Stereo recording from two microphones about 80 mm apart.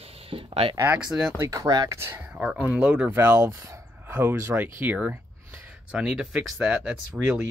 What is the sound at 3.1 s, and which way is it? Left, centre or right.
Speech, right.